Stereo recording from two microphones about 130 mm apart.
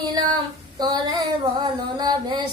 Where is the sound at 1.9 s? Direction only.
35° right (ahead or behind).